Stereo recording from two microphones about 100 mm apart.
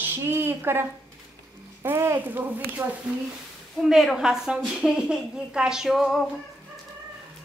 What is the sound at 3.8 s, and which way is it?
Speech, 5° left (ahead or behind).